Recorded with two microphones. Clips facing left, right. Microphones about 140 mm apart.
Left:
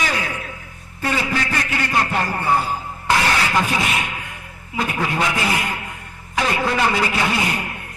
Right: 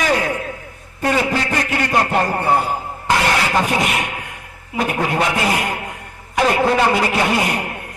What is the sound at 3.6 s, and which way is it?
Music, 60° right (ahead or behind).